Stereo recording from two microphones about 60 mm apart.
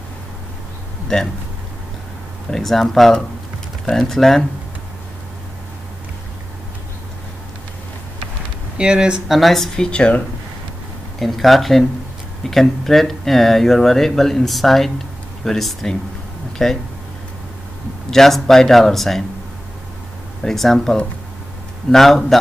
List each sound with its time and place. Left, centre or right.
1.0 s speech: centre
2.5 s speech: centre
8.7 s speech: centre
9.3 s speech: centre
9.8 s speech: centre
11.1 s speech: centre
18.1 s speech: centre
20.4 s speech: centre